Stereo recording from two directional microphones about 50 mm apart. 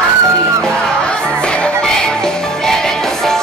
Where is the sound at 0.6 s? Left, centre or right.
Centre.